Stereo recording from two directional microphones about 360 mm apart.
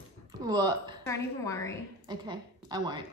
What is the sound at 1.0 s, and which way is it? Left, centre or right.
Speech, centre.